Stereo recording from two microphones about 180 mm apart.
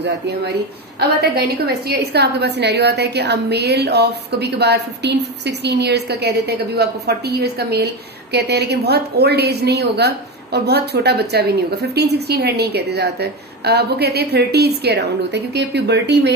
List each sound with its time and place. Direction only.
0.9 s a woman's voice: 60° right (ahead or behind)